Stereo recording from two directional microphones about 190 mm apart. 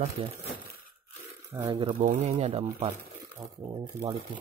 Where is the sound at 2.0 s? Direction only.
40° right (ahead or behind).